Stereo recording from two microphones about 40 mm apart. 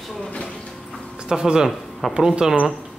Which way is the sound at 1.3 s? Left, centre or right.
Centre.